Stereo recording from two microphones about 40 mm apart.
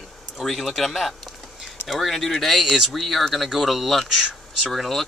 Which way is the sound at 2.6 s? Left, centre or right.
Centre.